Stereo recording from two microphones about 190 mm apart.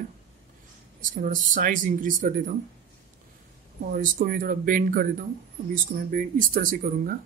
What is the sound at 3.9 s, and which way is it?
Speech, 50° right (ahead or behind).